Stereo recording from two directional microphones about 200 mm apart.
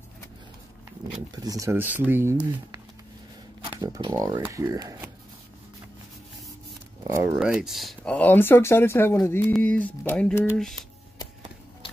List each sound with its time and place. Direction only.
1.3 s speech: 20° right (ahead or behind)
3.8 s speech: 20° right (ahead or behind)
7.1 s speech: 15° right (ahead or behind)
7.3 s speech: 5° right (ahead or behind)